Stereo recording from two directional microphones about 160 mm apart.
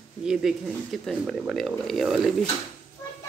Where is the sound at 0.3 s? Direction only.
Centre (ahead or behind).